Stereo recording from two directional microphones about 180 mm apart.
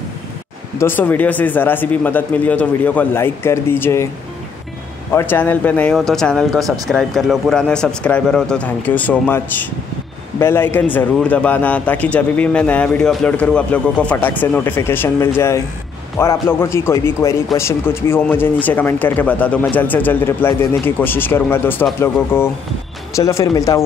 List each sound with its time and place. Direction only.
0.7 s speech: 10° left (ahead or behind)
5.1 s speech: 10° left (ahead or behind)